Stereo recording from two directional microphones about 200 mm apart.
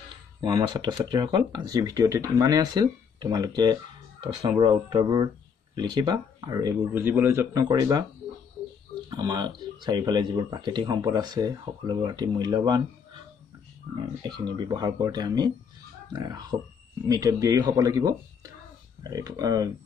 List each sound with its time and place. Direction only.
0.4 s speech: 20° right (ahead or behind)
9.1 s speech: 20° right (ahead or behind)
14.2 s speech: 20° right (ahead or behind)